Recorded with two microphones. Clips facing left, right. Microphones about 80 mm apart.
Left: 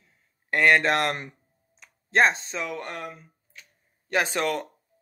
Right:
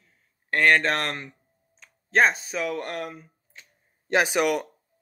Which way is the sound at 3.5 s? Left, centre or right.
Right.